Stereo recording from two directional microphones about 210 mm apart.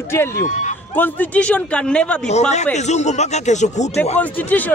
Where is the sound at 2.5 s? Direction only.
35° left (ahead or behind).